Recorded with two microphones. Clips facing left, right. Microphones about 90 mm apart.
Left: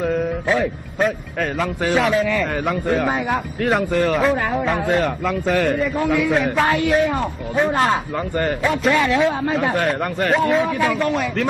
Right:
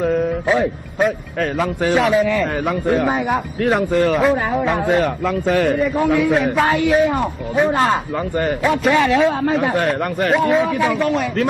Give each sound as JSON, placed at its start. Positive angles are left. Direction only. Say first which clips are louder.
{"t": 0.0, "sound": "music", "louder": "right 3 dB", "side_deg": 0}
{"t": 0.9, "sound": "a man's voice", "louder": "right 2 dB", "side_deg": -5}
{"t": 8.9, "sound": "a man's voice", "louder": "right 4 dB", "side_deg": -15}
{"t": 9.2, "sound": "a man's voice", "louder": "right 2 dB", "side_deg": 0}